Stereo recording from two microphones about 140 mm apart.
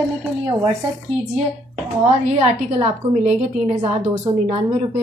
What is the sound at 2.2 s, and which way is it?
A woman's voice, 50° right (ahead or behind).